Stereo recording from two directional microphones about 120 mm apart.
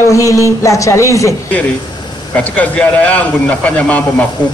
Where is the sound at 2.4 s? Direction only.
10° left (ahead or behind).